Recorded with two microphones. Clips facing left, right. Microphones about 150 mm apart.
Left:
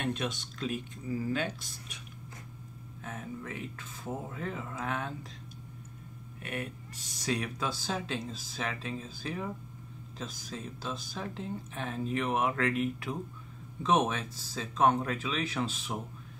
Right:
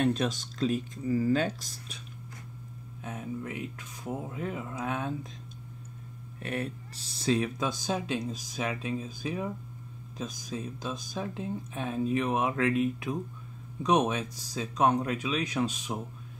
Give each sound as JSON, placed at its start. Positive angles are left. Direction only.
{"t": 0.0, "sound": "speech", "side_deg": -35}
{"t": 3.0, "sound": "speech", "side_deg": -20}
{"t": 6.4, "sound": "speech", "side_deg": -35}